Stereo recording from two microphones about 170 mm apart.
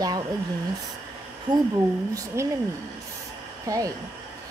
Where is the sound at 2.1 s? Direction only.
15° right (ahead or behind).